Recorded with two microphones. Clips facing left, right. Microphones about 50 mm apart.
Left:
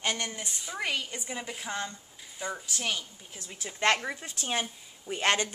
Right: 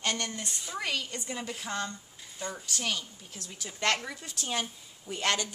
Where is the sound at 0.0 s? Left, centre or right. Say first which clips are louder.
Left 1 dB; centre.